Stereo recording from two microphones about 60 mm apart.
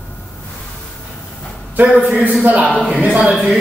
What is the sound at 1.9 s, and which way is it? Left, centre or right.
A man's voice, right.